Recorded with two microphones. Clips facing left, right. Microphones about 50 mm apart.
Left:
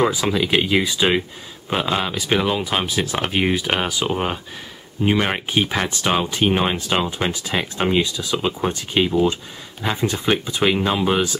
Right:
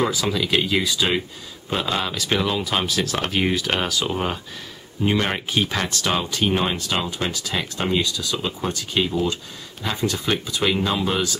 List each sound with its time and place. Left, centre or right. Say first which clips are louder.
0.0 s speech: left 3 dB; centre